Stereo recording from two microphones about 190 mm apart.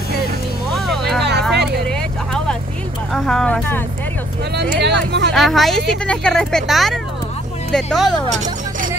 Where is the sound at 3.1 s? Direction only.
5° left (ahead or behind).